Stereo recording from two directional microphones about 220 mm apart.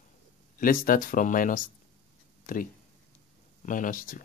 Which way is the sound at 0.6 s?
40° left (ahead or behind).